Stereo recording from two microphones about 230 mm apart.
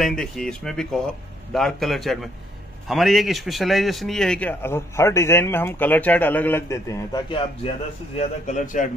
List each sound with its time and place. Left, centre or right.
0.0 s a man's voice: centre; by 7.7 s left
8.2 s a man's voice: left